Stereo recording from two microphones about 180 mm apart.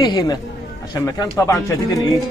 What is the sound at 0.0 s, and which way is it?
Speech, 25° left (ahead or behind).